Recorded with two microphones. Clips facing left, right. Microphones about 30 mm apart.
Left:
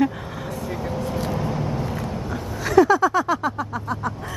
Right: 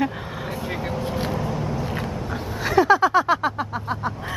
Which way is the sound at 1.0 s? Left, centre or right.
Right.